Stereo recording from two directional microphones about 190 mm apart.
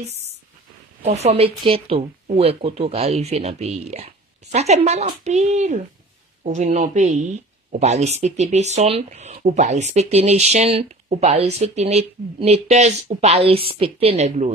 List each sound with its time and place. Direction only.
1.0 s speech: 35° right (ahead or behind)